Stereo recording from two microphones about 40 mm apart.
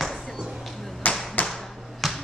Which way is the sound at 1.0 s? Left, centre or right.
Left.